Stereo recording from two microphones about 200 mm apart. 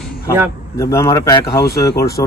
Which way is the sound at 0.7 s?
15° left (ahead or behind).